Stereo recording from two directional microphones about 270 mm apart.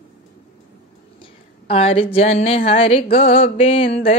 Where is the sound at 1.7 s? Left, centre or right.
Left.